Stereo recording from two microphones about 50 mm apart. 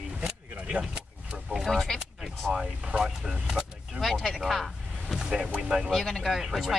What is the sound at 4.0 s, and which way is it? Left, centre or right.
Speech, centre.